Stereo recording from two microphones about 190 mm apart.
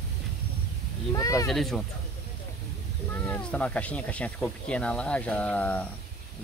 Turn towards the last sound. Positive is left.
turn(degrees=5)  # may be behind; listen again after turning